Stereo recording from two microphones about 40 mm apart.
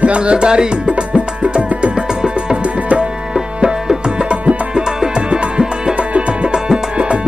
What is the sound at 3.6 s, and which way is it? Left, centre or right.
Music, right.